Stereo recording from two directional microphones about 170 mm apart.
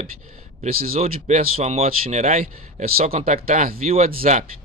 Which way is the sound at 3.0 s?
40° right (ahead or behind).